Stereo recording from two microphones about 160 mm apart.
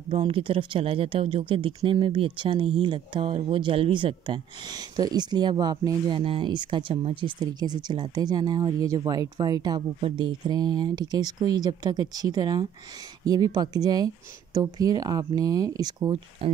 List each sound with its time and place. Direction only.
0.1 s speech: 35° right (ahead or behind)